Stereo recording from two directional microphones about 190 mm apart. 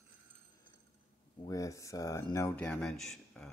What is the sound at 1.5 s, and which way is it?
Speech, 15° left (ahead or behind).